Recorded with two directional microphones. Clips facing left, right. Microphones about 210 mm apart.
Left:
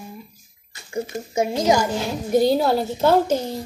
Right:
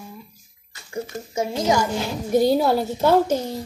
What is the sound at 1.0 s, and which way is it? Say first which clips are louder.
Speech: left 3 dB; 10° left (ahead or behind).